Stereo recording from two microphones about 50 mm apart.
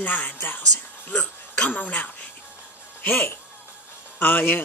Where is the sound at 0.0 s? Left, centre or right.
Left.